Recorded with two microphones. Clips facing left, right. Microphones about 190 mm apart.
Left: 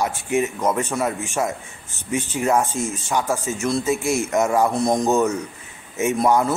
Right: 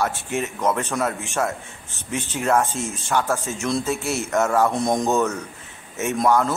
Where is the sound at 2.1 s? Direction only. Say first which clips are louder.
Left 1 dB; 10° left (ahead or behind).